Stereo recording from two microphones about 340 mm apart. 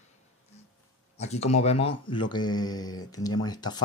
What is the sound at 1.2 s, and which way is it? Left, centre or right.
Speech, centre.